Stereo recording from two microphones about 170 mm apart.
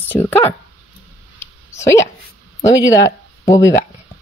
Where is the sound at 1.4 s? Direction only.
15° left (ahead or behind).